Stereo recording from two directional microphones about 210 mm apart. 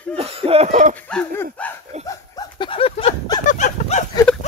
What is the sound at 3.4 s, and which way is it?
Livestock, 35° left (ahead or behind).